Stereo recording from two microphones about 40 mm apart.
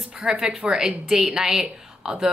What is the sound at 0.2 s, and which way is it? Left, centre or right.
A woman's voice, centre.